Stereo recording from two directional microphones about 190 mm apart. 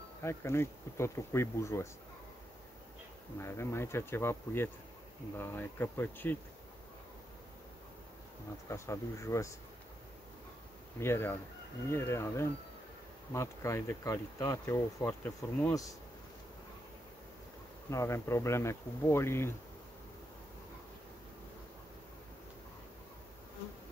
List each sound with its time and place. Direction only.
0.2 s speech: 15° left (ahead or behind)
3.3 s speech: 15° left (ahead or behind)
8.6 s speech: 15° left (ahead or behind)
11.0 s speech: 10° left (ahead or behind)
17.8 s speech: 15° left (ahead or behind)